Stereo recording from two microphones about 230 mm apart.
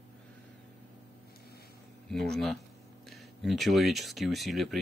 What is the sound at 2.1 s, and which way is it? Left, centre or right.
Speech, centre.